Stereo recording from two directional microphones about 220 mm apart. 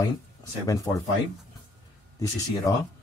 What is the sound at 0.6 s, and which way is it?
Speech, 15° left (ahead or behind).